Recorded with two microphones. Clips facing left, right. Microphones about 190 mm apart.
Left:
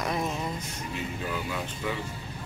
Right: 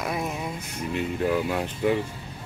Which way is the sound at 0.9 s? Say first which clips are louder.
Right 9 dB; 65° right (ahead or behind).